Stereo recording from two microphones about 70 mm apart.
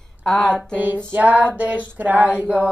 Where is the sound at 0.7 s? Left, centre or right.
Right.